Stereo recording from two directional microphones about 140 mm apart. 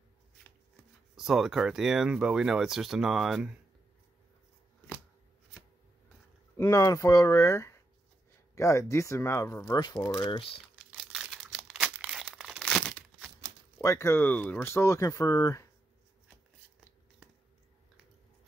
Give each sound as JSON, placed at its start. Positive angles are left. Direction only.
{"t": 1.1, "sound": "speech", "side_deg": 0}
{"t": 6.5, "sound": "speech", "side_deg": 20}
{"t": 11.0, "sound": "crumpling", "side_deg": -5}
{"t": 13.7, "sound": "speech", "side_deg": 20}